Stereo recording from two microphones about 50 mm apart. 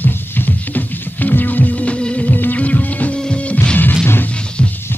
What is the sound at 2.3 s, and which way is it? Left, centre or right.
Music, left.